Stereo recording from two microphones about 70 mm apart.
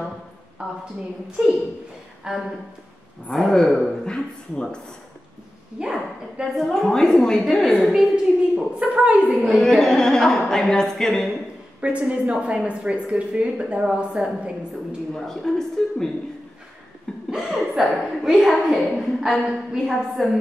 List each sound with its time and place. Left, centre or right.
0.6 s a sound: centre
1.4 s a woman's voice: centre
3.3 s speech: centre
5.8 s a woman's voice: centre
6.4 s a woman's voice: centre
8.5 s a woman's voice: centre
9.6 s speech: centre
11.8 s a woman's voice: centre
15.1 s speech: centre
17.3 s a woman's voice: centre